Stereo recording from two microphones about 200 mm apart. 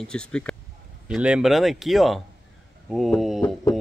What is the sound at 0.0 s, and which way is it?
Speech, 5° left (ahead or behind).